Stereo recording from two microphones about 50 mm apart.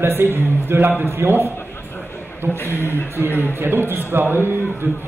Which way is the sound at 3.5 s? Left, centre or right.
Right.